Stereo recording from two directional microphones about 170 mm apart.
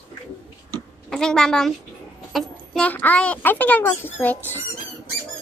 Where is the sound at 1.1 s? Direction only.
5° left (ahead or behind).